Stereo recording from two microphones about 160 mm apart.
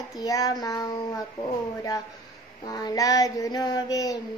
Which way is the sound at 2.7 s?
20° left (ahead or behind).